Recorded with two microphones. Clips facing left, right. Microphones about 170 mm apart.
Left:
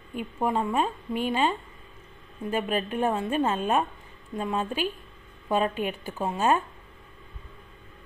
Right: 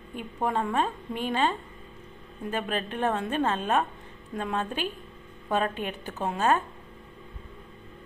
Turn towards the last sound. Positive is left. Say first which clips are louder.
# left 1 dB
turn(degrees=5)  # may be behind; listen again after turning